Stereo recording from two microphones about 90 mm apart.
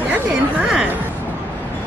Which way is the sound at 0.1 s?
15° right (ahead or behind).